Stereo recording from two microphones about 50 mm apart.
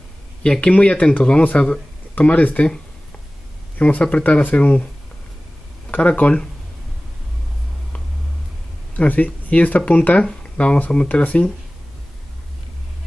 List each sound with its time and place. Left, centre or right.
0.4 s speech: left
3.7 s speech: left
5.9 s speech: left
8.9 s speech: left